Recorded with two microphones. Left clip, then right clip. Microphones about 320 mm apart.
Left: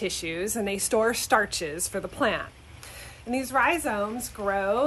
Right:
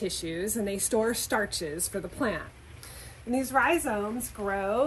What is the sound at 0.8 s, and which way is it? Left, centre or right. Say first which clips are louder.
Speech: left 5 dB; centre.